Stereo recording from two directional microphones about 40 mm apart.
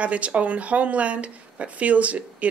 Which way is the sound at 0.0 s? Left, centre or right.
Right.